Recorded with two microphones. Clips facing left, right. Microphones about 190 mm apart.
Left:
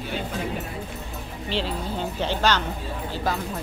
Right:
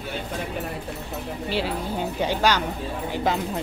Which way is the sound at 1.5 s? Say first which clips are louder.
Right 1 dB; 10° right (ahead or behind).